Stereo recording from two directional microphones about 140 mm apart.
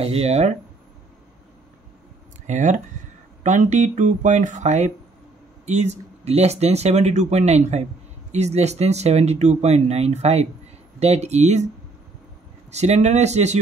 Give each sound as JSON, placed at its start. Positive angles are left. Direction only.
{"t": 0.0, "sound": "speech", "side_deg": -45}
{"t": 2.4, "sound": "speech", "side_deg": -60}
{"t": 12.7, "sound": "speech", "side_deg": -50}